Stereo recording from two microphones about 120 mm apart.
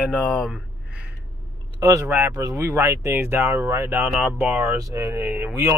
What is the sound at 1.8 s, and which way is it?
Speech, 25° right (ahead or behind).